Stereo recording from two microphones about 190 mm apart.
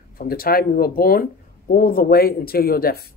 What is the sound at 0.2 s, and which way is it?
Speech, 50° left (ahead or behind).